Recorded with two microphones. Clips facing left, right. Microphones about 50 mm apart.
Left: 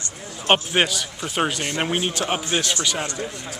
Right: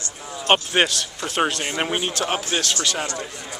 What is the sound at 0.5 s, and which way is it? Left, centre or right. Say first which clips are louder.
Speech: right 1 dB; centre.